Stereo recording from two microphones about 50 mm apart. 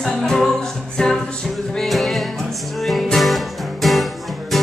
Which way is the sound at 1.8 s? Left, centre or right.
Centre.